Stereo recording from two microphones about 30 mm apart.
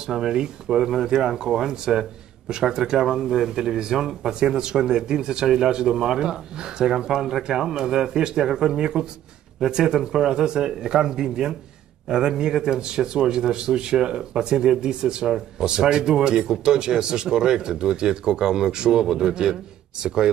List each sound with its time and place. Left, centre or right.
0.2 s speech: right
7.2 s speech: centre
7.7 s speech: right